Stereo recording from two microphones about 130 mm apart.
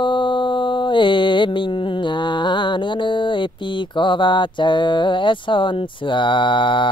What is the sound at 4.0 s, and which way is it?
Speech, 40° left (ahead or behind).